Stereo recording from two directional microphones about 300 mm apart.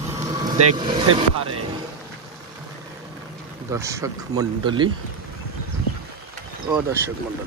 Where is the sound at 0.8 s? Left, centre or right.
Centre.